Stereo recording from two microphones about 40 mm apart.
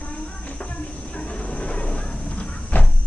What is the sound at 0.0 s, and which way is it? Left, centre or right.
Train, left.